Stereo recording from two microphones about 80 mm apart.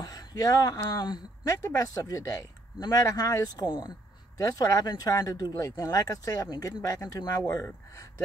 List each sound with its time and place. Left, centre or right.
0.0 s a sound: left
0.8 s speech: left
1.4 s speech: left
3.6 s speech: left
4.4 s speech: left